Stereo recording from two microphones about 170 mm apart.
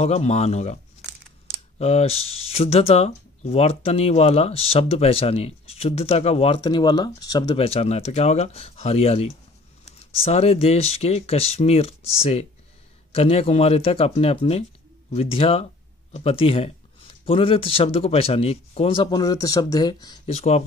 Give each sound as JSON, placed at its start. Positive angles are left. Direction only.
{"t": 0.0, "sound": "speech", "side_deg": 40}
{"t": 1.8, "sound": "speech", "side_deg": 35}
{"t": 20.2, "sound": "speech", "side_deg": 40}